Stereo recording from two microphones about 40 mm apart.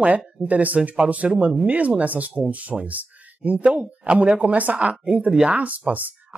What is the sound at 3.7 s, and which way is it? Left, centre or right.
Speech, right.